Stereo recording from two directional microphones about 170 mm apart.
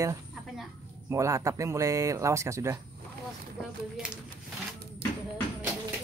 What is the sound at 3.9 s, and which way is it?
Speech, 5° right (ahead or behind).